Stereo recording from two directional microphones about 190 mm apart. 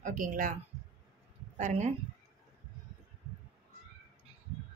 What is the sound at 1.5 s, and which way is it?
Speech, 40° right (ahead or behind).